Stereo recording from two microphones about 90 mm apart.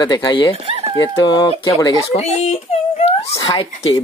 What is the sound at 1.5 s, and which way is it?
Speech, 90° left.